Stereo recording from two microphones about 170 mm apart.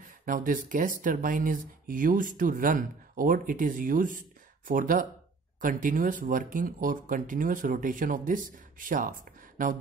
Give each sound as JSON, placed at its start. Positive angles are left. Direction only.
{"t": 0.0, "sound": "speech", "side_deg": -55}